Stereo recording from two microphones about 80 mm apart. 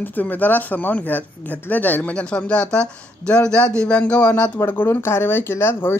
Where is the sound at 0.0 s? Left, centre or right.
Left.